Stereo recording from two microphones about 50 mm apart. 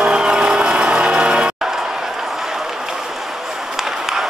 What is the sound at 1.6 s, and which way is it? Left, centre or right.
Run, centre.